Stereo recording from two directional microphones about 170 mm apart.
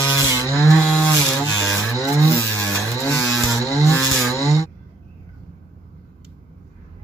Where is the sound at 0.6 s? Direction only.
15° left (ahead or behind).